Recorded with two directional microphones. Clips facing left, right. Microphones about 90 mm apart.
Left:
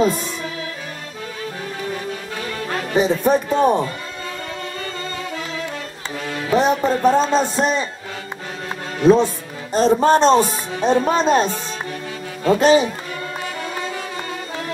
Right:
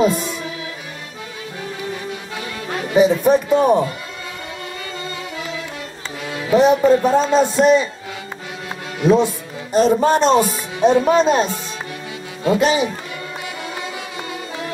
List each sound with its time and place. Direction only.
2.9 s music: 40° left (ahead or behind)
6.2 s speech: 40° left (ahead or behind)
9.0 s music: 35° left (ahead or behind)